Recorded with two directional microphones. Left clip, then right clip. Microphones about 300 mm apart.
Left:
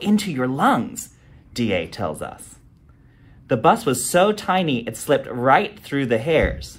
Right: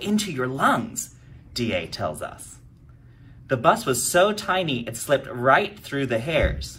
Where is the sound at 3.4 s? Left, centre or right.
Left.